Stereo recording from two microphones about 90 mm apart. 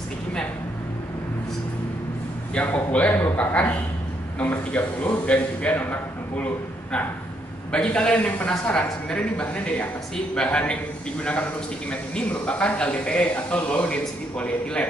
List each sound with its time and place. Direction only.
2.5 s a man's voice: 15° left (ahead or behind)
11.9 s a man's voice: 15° left (ahead or behind)